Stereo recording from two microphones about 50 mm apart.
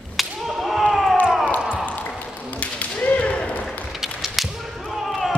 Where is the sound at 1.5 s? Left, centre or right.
Centre.